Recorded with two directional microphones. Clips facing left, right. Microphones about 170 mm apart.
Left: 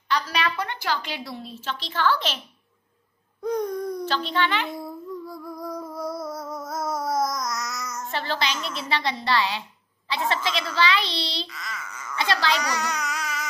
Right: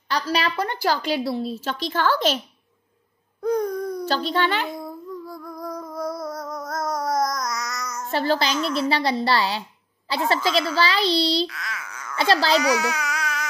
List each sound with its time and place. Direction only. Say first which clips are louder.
0.1 s a woman's voice: right 2 dB; 35° right (ahead or behind)
3.4 s a sound: right 3 dB; centre (ahead or behind)
4.1 s a woman's voice: right 4 dB; 40° right (ahead or behind)
4.6 s music: right 1 dB; centre (ahead or behind)
8.1 s a woman's voice: right 6 dB; 40° right (ahead or behind)
11.4 s a sound: right 5 dB; centre (ahead or behind)
12.2 s a woman's voice: right 4 dB; 35° right (ahead or behind)
12.5 s baby cry: right 7 dB; 5° right (ahead or behind)